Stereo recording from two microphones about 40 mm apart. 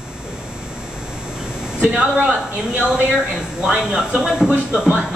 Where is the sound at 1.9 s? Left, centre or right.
Right.